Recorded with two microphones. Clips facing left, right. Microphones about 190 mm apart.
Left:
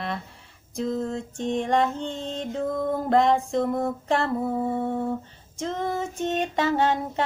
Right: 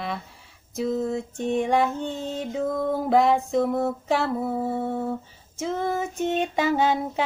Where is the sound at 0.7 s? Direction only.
5° right (ahead or behind).